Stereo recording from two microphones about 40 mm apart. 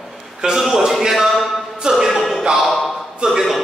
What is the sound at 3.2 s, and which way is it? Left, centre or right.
Speech, right.